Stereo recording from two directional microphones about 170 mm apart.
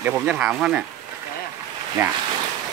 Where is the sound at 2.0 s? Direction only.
10° right (ahead or behind).